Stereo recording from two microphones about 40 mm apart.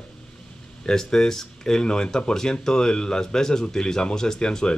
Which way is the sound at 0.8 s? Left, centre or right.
Centre.